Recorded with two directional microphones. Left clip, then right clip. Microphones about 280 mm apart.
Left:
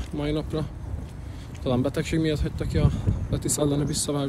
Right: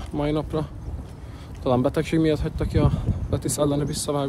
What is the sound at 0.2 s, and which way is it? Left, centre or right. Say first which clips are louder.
Speech: right 3 dB; centre.